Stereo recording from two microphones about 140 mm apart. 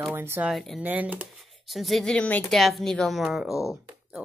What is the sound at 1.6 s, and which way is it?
Speech, centre (ahead or behind).